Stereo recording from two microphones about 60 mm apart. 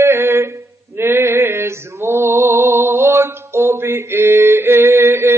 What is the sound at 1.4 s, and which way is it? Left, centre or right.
Mantra, right.